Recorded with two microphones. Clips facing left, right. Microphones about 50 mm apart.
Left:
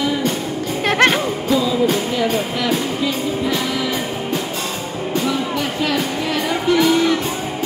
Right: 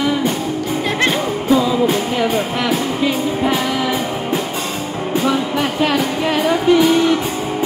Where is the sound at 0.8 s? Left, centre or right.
Left.